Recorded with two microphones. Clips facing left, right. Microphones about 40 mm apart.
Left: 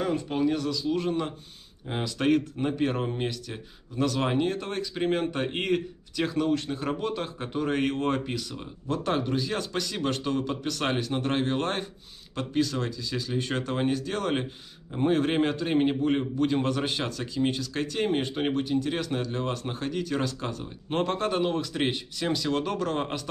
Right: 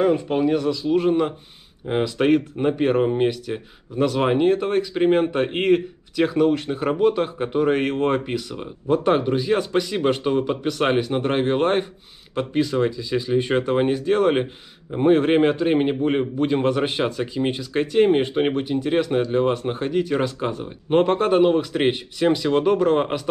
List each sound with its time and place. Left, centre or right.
0.0 s speech: right